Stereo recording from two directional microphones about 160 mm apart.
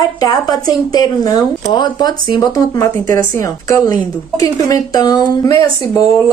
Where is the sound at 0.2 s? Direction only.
25° left (ahead or behind).